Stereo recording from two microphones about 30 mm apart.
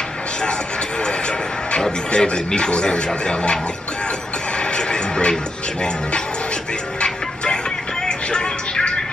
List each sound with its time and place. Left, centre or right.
1.9 s speech: left
4.6 s music: left
8.0 s music: left